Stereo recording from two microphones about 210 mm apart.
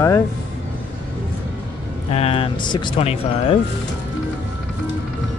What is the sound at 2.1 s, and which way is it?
Speech, 25° left (ahead or behind).